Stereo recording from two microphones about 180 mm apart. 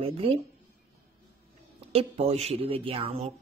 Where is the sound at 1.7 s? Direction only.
35° right (ahead or behind).